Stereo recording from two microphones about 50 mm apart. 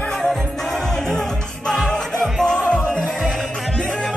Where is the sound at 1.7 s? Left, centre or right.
Centre.